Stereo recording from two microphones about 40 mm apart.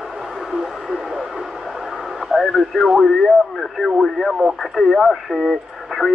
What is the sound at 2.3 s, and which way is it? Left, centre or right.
Radio, centre.